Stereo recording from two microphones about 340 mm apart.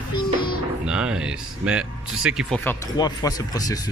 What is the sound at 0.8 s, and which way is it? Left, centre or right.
Speech, centre.